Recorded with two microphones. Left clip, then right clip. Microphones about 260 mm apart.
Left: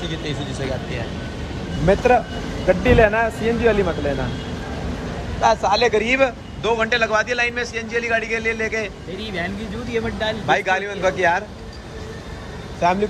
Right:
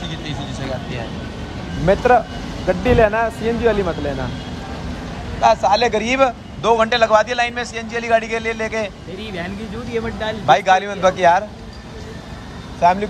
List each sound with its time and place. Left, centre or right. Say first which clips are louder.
0.2 s a man's voice: left 1 dB; centre
2.0 s a man's voice: right 2 dB; centre
5.4 s a man's voice: right 3 dB; right
9.9 s a man's voice: even; centre
12.8 s speech: right 4 dB; right